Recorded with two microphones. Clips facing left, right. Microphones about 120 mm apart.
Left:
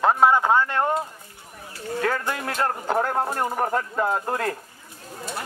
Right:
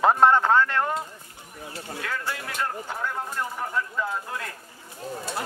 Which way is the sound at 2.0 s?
50° left (ahead or behind).